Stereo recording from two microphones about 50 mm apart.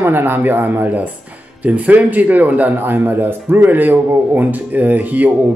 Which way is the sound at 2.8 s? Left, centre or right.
Right.